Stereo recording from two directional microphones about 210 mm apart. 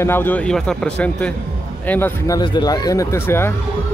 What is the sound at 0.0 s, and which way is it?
Speech, 10° left (ahead or behind).